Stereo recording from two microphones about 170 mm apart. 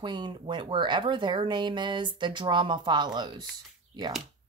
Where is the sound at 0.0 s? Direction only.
25° right (ahead or behind).